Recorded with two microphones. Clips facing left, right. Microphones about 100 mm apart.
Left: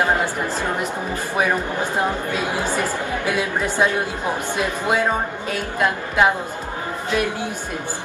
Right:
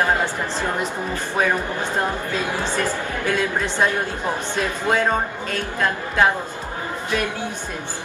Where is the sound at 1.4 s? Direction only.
15° left (ahead or behind).